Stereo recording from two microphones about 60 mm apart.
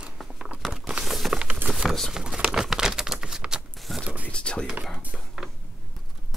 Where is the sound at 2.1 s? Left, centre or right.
Centre.